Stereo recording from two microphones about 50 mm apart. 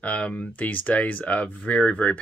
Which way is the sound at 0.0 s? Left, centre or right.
Left.